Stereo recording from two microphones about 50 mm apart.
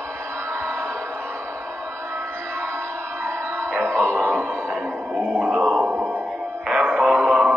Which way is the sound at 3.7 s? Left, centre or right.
Right.